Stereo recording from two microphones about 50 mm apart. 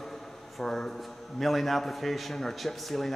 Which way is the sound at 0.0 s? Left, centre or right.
Centre.